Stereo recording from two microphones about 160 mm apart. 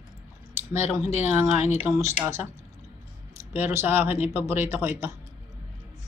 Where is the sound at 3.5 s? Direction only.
15° right (ahead or behind).